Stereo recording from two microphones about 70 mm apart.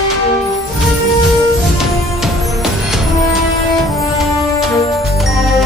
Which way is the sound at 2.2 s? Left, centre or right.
Centre.